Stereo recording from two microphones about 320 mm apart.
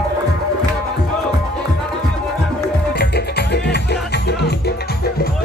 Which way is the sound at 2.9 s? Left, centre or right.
Left.